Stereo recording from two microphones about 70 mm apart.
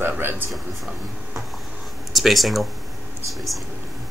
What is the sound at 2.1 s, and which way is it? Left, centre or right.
Speech, centre.